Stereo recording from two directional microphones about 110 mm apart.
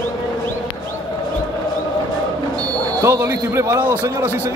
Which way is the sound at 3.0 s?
25° right (ahead or behind).